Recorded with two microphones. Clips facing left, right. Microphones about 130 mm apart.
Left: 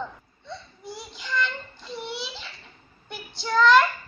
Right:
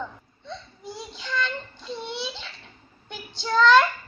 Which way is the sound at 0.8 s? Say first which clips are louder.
Right 2 dB; 25° right (ahead or behind).